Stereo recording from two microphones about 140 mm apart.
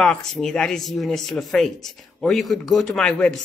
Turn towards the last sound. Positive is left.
turn(degrees=5)  # may be behind; listen again after turning